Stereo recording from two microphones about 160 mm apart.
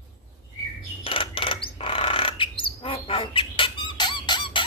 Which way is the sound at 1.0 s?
35° left (ahead or behind).